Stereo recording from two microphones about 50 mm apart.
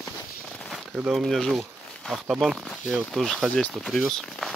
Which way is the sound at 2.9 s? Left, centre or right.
Centre.